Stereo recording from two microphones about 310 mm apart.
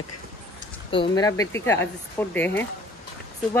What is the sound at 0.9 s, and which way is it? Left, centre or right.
Speech, centre.